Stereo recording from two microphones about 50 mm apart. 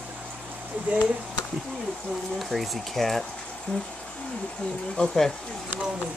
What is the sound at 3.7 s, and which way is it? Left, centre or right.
Speech, left.